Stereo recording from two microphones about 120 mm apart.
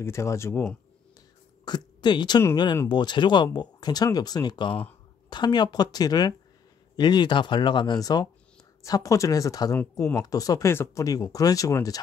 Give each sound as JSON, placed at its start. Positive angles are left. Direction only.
{"t": 0.0, "sound": "speech", "side_deg": 25}
{"t": 1.6, "sound": "a sound", "side_deg": 35}
{"t": 2.5, "sound": "speech", "side_deg": 40}